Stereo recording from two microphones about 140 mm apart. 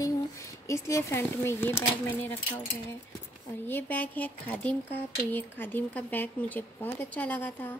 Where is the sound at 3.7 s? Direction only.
15° left (ahead or behind).